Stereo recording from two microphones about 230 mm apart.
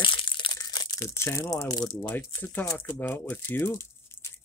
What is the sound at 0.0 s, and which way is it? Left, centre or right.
Crumpling, left.